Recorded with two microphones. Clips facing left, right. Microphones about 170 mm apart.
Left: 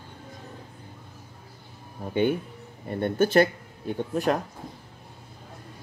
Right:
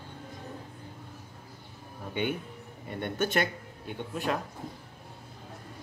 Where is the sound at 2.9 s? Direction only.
35° left (ahead or behind).